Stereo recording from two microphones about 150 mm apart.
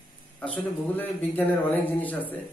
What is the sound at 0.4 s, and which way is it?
A man's voice, 10° left (ahead or behind).